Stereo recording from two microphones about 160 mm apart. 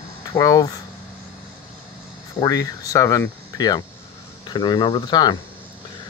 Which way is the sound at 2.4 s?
20° left (ahead or behind).